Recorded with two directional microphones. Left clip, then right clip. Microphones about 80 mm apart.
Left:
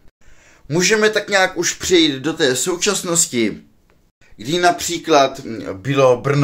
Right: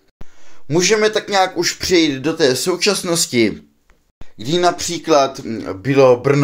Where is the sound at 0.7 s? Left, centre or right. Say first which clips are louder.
Right 1 dB; centre; by 3.5 s right.